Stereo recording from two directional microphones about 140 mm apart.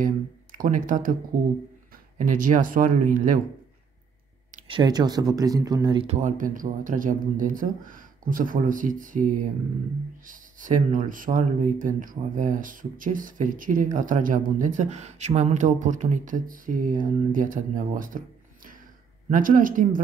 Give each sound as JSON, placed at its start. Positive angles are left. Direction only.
{"t": 0.0, "sound": "speech", "side_deg": -75}
{"t": 2.1, "sound": "speech", "side_deg": -70}
{"t": 4.6, "sound": "speech", "side_deg": -30}
{"t": 6.0, "sound": "speech", "side_deg": -65}
{"t": 19.3, "sound": "speech", "side_deg": -70}